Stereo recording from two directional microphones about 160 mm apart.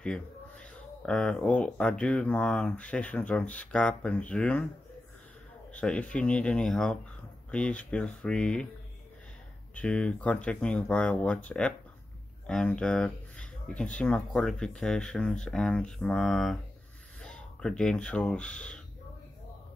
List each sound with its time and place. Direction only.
0.0 s speech: 5° left (ahead or behind)
5.7 s a sound: 10° left (ahead or behind)
6.1 s speech: 5° left (ahead or behind)
9.8 s speech: 5° left (ahead or behind)